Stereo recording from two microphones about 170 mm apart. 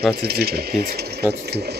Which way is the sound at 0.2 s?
70° right (ahead or behind).